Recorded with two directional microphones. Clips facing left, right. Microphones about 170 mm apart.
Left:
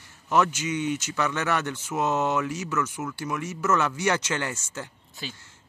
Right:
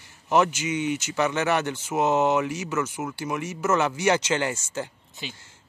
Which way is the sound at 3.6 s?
25° right (ahead or behind).